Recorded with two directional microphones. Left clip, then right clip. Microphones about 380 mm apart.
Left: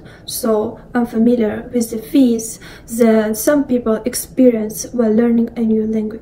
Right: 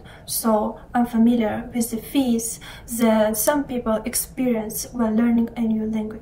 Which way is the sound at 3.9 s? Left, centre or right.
Centre.